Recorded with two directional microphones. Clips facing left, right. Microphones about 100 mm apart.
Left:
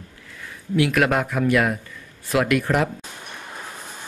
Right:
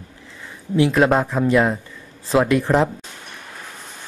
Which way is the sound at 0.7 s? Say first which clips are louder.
Right 4 dB; 25° right (ahead or behind).